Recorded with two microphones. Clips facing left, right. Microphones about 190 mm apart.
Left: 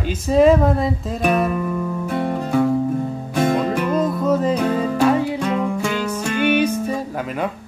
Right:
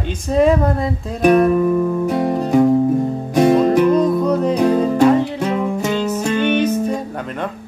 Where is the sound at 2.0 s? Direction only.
35° right (ahead or behind).